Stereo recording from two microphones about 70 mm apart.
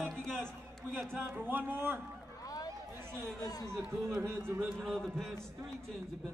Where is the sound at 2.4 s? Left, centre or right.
Left.